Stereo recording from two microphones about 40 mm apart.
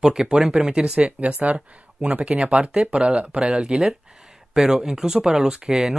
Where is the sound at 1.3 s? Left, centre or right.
Right.